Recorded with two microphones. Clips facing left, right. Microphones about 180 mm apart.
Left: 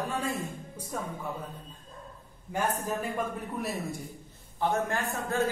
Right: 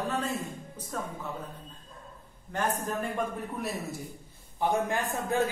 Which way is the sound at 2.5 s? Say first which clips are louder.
Even; 10° left (ahead or behind).